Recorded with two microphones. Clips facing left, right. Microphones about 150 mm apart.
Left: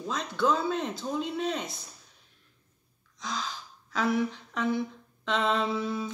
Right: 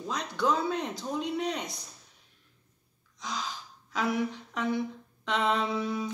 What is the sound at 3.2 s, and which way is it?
Gasp, 15° right (ahead or behind).